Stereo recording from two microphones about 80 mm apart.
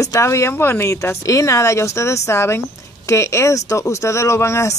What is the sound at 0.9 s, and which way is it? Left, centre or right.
Speech, left.